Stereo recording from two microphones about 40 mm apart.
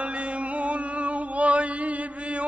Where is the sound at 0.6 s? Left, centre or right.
Right.